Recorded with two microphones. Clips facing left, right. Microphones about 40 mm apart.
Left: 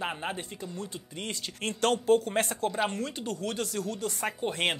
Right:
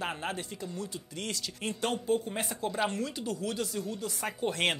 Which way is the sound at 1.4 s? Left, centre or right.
Left.